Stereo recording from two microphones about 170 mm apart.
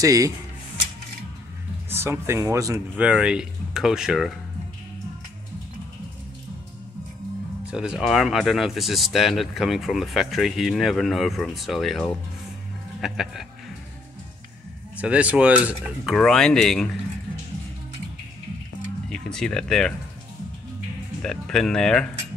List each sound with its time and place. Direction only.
0.0 s speech: 20° right (ahead or behind)
1.9 s speech: 15° right (ahead or behind)
3.1 s speech: 5° right (ahead or behind)
7.7 s speech: 5° right (ahead or behind)
15.0 s speech: 5° right (ahead or behind)
16.2 s speech: 5° left (ahead or behind)
19.0 s speech: 5° left (ahead or behind)
21.2 s speech: 5° left (ahead or behind)